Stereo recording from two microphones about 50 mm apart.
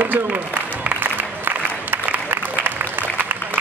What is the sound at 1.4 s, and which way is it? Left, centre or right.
Applause, right.